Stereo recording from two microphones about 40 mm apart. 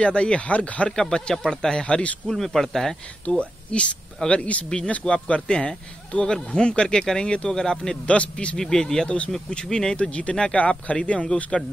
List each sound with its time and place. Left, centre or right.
0.0 s speech: left
0.8 s speech: centre
2.2 s speech: centre
3.3 s speech: left
5.0 s speech: centre
5.3 s speech: left
8.1 s speech: left
8.7 s speech: centre
10.6 s speech: left